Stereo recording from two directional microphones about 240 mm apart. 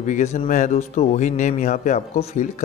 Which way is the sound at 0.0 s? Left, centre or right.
Left.